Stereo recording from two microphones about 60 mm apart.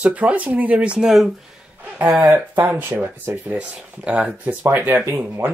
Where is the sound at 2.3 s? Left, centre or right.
Right.